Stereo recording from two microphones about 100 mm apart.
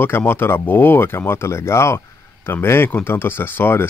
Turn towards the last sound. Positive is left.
turn(degrees=20)  # may be behind; listen again after turning